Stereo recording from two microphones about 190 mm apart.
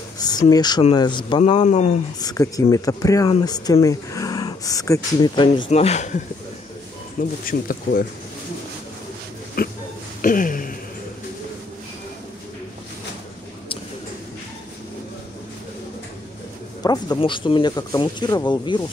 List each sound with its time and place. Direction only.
0.2 s speech: 20° left (ahead or behind)
1.6 s speech: 40° left (ahead or behind)
2.1 s speech: 20° left (ahead or behind)
5.7 s speech: 35° left (ahead or behind)
7.2 s speech: 50° left (ahead or behind)
9.6 s speech: 50° left (ahead or behind)
10.2 s a sound: 45° left (ahead or behind)
16.8 s speech: 20° left (ahead or behind)